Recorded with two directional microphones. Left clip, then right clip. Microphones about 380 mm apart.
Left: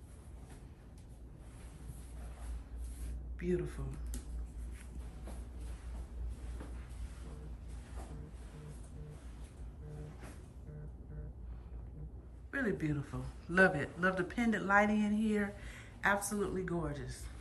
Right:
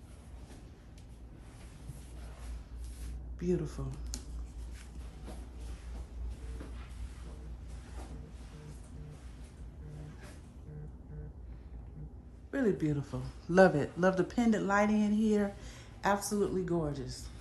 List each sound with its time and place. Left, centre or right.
3.3 s speech: centre
12.4 s speech: centre